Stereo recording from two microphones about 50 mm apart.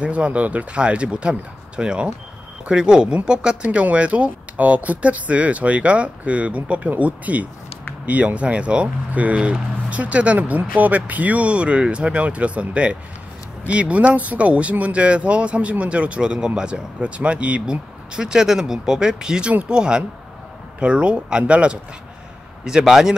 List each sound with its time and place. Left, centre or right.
0.0 s speech: right
22.7 s speech: centre